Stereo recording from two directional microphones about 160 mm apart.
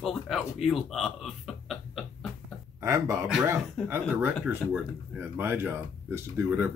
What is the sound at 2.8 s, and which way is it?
Speech, 20° right (ahead or behind).